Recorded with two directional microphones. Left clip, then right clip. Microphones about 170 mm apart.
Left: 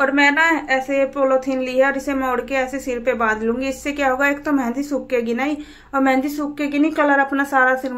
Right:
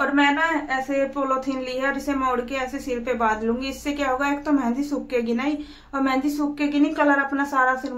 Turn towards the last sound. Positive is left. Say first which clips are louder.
# left 4 dB
turn(degrees=25)  # may be behind; listen again after turning